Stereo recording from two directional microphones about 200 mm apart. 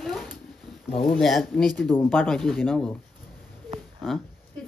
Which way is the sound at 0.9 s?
Centre (ahead or behind).